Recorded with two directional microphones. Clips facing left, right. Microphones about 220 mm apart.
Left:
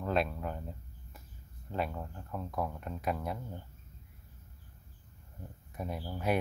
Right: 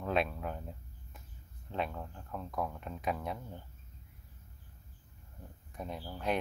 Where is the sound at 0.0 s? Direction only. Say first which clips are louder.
Left 1 dB; centre (ahead or behind).